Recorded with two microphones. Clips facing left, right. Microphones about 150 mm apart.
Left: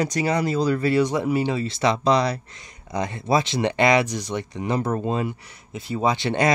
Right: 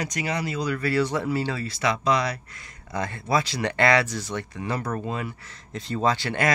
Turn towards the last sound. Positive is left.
turn(degrees=20)  # may be behind; listen again after turning